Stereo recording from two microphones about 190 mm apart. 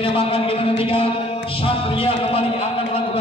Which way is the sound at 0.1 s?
30° left (ahead or behind).